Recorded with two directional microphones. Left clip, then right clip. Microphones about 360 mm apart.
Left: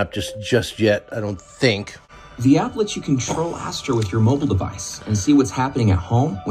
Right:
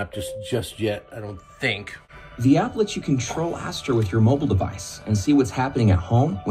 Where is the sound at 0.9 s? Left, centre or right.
Left.